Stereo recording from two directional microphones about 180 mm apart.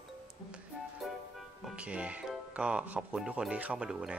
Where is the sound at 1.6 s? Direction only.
5° right (ahead or behind).